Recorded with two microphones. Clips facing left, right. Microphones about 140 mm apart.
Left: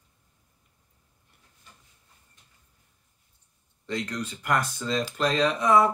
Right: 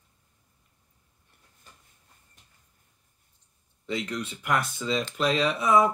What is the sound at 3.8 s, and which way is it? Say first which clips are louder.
Speech: even; 5° right (ahead or behind).